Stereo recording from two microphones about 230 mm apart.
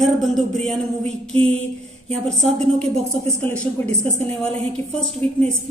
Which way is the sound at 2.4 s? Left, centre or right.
Centre.